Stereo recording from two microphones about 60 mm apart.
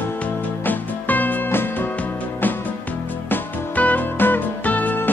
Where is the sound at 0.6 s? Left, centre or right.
Left.